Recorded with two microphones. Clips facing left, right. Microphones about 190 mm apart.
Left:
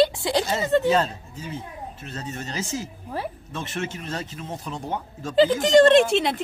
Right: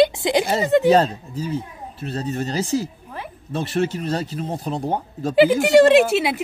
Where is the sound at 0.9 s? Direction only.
35° right (ahead or behind).